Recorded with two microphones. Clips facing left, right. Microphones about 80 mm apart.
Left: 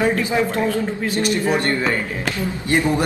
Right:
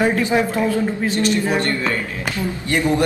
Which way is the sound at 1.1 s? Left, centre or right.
Left.